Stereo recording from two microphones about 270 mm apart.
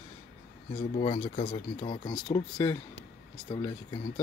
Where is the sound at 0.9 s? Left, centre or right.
Left.